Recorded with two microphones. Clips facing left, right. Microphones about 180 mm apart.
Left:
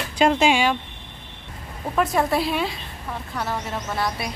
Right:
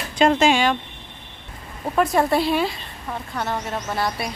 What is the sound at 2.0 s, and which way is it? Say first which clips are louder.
A woman's voice: right 2 dB; centre (ahead or behind).